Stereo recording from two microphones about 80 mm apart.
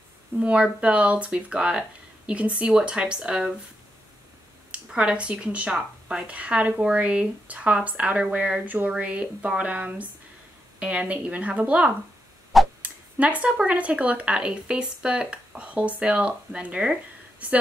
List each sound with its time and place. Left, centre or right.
0.4 s speech: centre
4.6 s speech: centre